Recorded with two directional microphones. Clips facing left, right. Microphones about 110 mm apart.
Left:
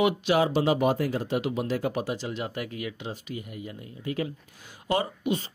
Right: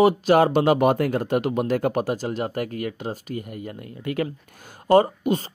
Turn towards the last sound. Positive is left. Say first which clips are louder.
# right 8 dB
turn(degrees=-45)  # may be behind; listen again after turning